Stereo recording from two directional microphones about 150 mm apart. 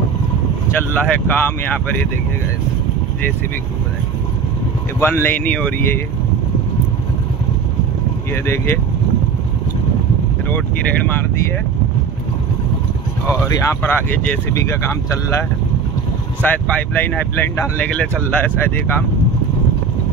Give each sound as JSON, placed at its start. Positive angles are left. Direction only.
{"t": 0.7, "sound": "speech", "side_deg": 10}
{"t": 5.0, "sound": "speech", "side_deg": 10}
{"t": 13.3, "sound": "speech", "side_deg": 15}
{"t": 16.4, "sound": "speech", "side_deg": 10}